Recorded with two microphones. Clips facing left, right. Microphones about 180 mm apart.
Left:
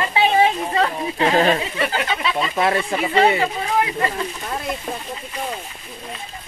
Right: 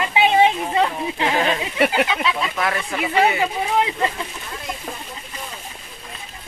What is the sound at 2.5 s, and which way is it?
Speech, 25° left (ahead or behind).